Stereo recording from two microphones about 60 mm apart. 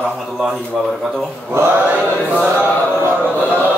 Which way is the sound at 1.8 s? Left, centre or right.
Right.